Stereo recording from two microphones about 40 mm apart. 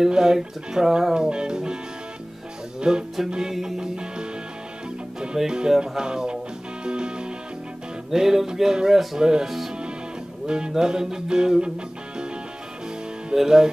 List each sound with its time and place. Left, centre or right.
0.1 s music: centre
1.1 s music: right
2.8 s music: right
3.5 s music: centre
3.8 s music: right
5.4 s music: centre
5.8 s music: centre
8.1 s music: centre
13.3 s music: centre